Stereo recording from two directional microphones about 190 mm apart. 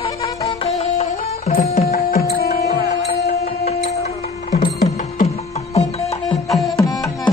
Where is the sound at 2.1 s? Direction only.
55° left (ahead or behind).